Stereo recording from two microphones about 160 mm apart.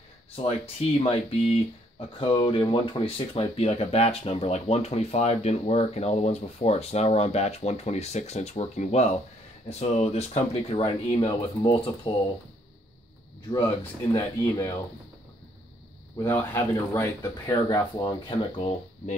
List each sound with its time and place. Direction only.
0.4 s speech: 40° left (ahead or behind)
14.1 s speech: 15° left (ahead or behind)
16.2 s speech: 15° left (ahead or behind)
18.6 s speech: 35° left (ahead or behind)